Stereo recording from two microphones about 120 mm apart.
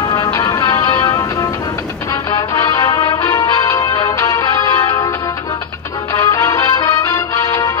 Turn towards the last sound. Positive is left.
turn(degrees=25)  # may be behind; listen again after turning